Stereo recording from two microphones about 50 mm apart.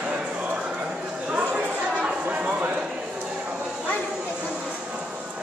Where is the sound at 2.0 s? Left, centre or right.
Right.